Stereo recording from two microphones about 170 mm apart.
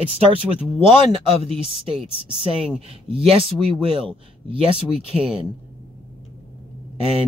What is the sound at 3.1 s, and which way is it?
Speech, 35° right (ahead or behind).